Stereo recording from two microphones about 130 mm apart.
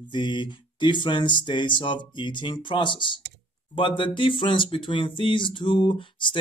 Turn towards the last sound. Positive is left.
turn(degrees=40)  # may be behind; listen again after turning